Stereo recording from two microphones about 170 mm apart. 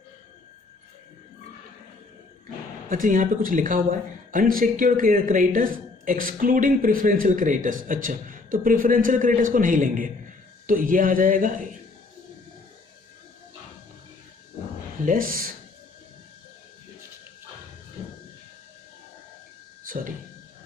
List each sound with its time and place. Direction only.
2.9 s speech: 50° right (ahead or behind)
15.0 s speech: 55° right (ahead or behind)
19.9 s speech: 55° right (ahead or behind)